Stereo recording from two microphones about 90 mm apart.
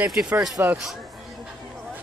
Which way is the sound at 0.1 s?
5° right (ahead or behind).